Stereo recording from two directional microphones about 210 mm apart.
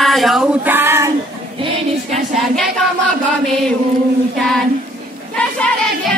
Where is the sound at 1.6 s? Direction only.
35° right (ahead or behind).